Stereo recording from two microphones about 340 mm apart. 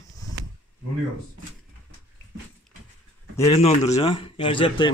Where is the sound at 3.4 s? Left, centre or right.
Centre.